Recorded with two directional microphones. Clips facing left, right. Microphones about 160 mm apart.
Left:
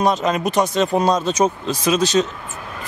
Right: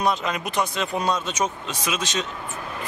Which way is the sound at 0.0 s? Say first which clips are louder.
Left 6 dB; 40° left (ahead or behind).